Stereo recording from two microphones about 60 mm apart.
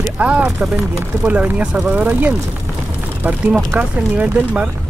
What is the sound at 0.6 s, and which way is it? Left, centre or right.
Speech, right.